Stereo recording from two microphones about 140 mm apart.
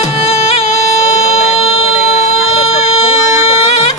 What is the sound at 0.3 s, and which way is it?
Music, 45° left (ahead or behind).